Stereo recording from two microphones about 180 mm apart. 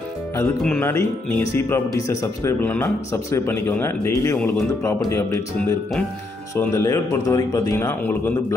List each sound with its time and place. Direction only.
0.6 s speech: 5° left (ahead or behind)